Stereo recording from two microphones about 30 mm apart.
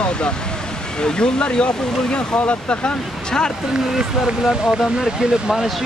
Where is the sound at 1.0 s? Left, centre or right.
Left.